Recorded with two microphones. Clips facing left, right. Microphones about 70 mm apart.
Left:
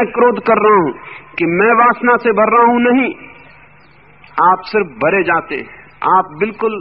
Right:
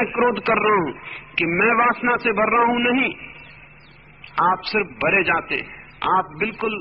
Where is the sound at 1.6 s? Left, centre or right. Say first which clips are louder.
Left 8 dB; left.